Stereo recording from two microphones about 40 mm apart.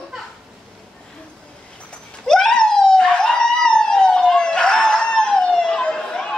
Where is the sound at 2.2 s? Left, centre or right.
Centre.